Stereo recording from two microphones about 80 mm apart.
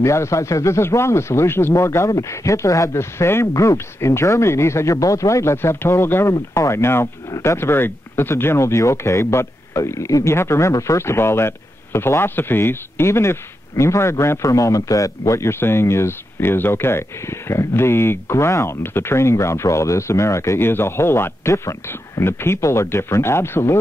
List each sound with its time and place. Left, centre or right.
0.0 s speech: left